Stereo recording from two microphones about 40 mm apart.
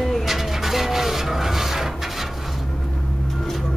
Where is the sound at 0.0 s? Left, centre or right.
Centre.